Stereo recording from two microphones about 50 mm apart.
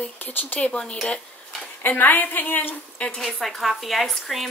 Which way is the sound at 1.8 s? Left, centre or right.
Left.